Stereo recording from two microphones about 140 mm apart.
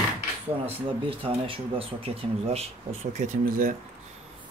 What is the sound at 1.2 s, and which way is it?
Speech, 40° right (ahead or behind).